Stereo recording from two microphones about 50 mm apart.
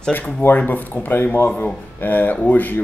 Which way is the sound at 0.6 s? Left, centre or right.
Left.